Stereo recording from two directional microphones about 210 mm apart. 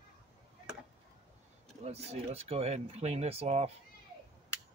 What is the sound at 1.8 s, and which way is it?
Speech, 30° right (ahead or behind).